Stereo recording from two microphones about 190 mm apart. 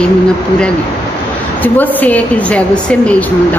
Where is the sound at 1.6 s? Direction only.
10° left (ahead or behind).